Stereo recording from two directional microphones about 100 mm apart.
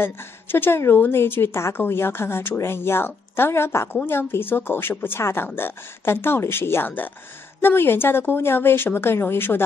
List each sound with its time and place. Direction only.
0.0 s a woman's voice: 20° left (ahead or behind)